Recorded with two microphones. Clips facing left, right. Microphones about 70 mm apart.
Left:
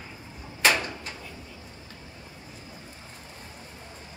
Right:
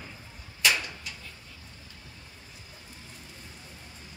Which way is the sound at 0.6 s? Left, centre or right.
Left.